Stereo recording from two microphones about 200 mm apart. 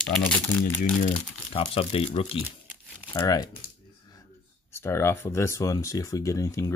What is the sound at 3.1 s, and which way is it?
Speech, 20° left (ahead or behind).